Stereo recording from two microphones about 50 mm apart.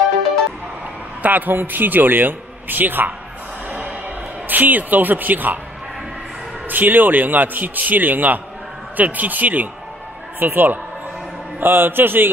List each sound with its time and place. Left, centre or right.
1.2 s a man's voice: right
4.5 s a man's voice: right
6.7 s a man's voice: right